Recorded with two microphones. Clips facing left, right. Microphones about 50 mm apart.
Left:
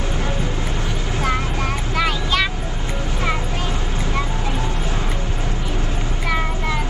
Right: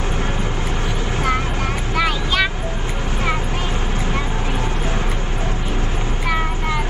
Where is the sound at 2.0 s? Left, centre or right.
Centre.